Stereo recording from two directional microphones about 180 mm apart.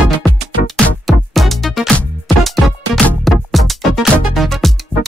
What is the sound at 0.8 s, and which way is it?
Music, centre (ahead or behind).